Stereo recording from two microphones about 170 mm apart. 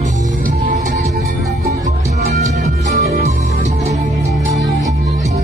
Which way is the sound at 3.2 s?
40° right (ahead or behind).